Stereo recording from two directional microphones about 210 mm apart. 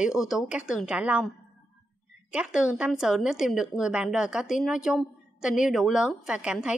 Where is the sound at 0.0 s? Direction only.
Centre (ahead or behind).